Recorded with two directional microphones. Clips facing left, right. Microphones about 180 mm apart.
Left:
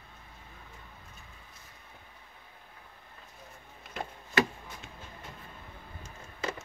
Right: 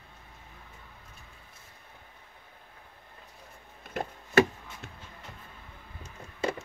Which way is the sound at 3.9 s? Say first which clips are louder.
Right 7 dB; 50° right (ahead or behind).